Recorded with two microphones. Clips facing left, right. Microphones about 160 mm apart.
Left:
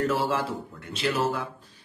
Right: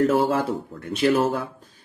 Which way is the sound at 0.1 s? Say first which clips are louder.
Right 6 dB; 45° right (ahead or behind).